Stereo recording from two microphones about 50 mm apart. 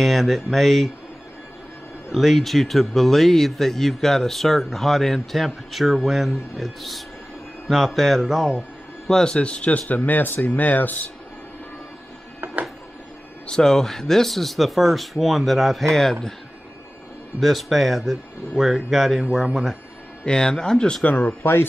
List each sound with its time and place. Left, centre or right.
0.0 s speech: centre
2.1 s speech: centre
9.0 s speech: centre; by 11.1 s left
13.5 s speech: centre
17.4 s speech: centre
20.2 s speech: centre
21.0 s speech: left